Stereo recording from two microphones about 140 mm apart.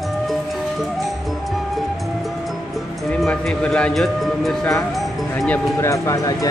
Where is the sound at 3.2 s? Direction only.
5° left (ahead or behind).